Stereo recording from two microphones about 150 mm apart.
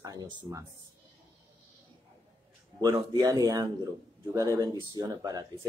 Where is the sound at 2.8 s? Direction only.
25° right (ahead or behind).